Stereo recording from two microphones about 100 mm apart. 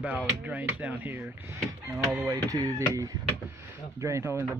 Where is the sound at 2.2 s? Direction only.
40° right (ahead or behind).